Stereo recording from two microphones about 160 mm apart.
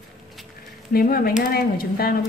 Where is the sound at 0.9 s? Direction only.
65° left (ahead or behind).